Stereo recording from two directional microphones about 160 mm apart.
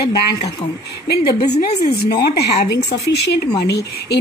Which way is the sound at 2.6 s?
90° left.